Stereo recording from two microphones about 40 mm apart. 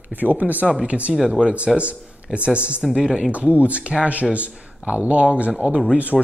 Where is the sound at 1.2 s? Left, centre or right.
Centre.